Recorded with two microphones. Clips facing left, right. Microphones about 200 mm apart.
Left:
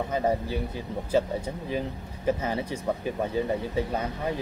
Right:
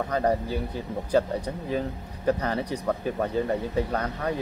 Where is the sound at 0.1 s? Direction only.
5° left (ahead or behind).